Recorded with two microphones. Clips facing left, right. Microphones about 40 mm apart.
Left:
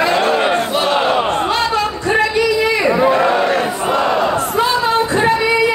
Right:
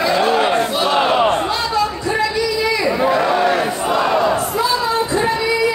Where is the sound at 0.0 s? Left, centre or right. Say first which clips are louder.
Left 1 dB; left.